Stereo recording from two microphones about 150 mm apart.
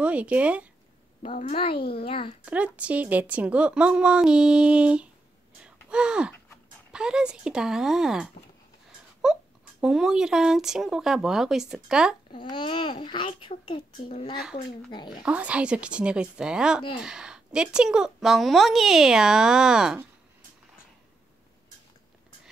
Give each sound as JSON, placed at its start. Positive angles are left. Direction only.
{"t": 0.0, "sound": "a woman's voice", "side_deg": -10}
{"t": 1.3, "sound": "a child's voice", "side_deg": 45}
{"t": 2.4, "sound": "a woman's voice", "side_deg": -10}
{"t": 5.6, "sound": "gasp", "side_deg": -5}
{"t": 6.9, "sound": "speech", "side_deg": -5}
{"t": 12.3, "sound": "a child's voice", "side_deg": 30}
{"t": 15.2, "sound": "a woman's voice", "side_deg": -10}